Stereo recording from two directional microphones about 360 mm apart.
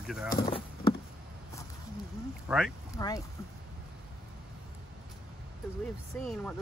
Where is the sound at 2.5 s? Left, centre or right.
Centre.